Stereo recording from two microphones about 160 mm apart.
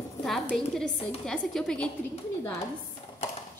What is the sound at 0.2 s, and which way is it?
A woman's voice, centre (ahead or behind).